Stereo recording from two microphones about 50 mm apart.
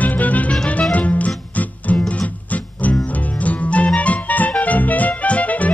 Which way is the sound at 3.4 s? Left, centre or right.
Left.